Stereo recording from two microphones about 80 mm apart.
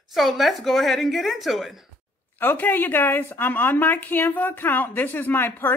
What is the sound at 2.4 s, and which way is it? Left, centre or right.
A woman's voice, left.